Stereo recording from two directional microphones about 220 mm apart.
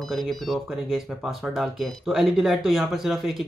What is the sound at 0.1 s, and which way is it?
Speech, centre (ahead or behind).